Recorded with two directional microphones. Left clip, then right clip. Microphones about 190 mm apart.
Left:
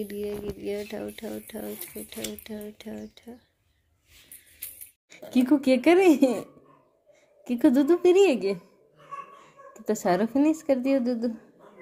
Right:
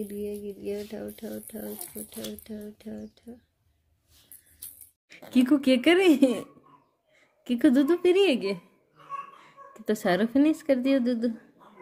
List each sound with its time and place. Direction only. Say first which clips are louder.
0.0 s speech: left 2 dB; 5° left (ahead or behind)
5.2 s a woman's voice: even; 10° right (ahead or behind)
7.4 s a woman's voice: left 1 dB; 10° right (ahead or behind)